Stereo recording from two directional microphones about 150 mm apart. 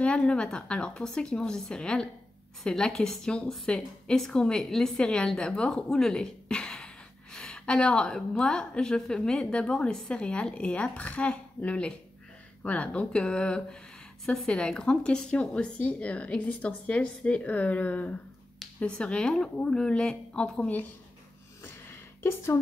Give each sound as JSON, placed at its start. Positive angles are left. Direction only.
{"t": 0.0, "sound": "a woman's voice", "side_deg": 5}